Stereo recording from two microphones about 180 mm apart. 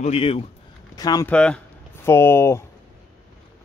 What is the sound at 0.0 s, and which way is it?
Speech, 30° left (ahead or behind).